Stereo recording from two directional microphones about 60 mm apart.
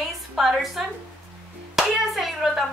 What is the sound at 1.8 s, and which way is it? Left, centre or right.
Clapping, centre.